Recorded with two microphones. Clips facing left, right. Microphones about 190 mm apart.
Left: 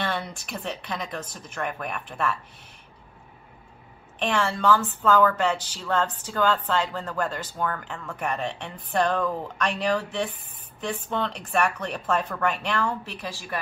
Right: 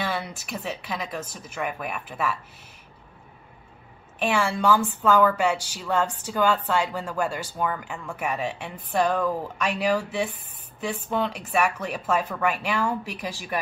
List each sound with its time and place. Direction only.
0.0 s speech: 5° right (ahead or behind)
4.2 s a woman's voice: 10° right (ahead or behind)